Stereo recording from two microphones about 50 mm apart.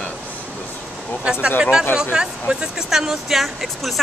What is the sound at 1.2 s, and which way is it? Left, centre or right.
Speech, centre.